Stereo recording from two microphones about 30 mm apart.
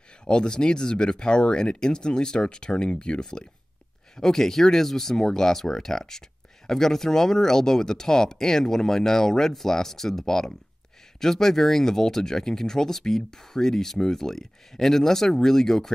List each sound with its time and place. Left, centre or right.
0.2 s speech: left
4.2 s speech: centre